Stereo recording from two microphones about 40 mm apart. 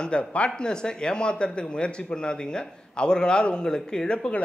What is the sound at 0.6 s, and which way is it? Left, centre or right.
Speech, left.